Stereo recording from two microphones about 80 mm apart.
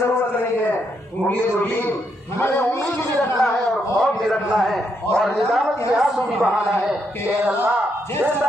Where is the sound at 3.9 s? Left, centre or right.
Centre.